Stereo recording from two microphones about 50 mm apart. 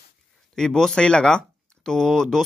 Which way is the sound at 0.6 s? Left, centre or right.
Centre.